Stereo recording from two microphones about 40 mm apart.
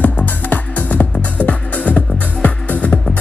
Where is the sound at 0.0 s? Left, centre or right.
Left.